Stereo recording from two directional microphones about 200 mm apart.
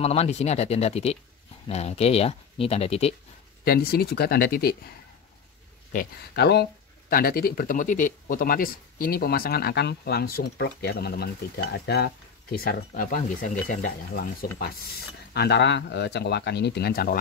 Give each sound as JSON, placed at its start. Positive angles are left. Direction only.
{"t": 0.0, "sound": "speech", "side_deg": 30}
{"t": 3.6, "sound": "speech", "side_deg": 50}
{"t": 6.3, "sound": "speech", "side_deg": 55}